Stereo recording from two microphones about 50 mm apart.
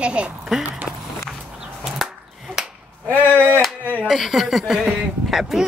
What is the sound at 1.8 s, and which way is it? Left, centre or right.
Chop, centre.